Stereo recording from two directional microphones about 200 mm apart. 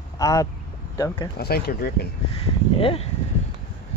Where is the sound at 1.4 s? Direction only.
50° left (ahead or behind).